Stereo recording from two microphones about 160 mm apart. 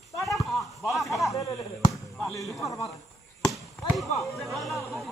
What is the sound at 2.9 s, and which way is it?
Chop, 20° left (ahead or behind).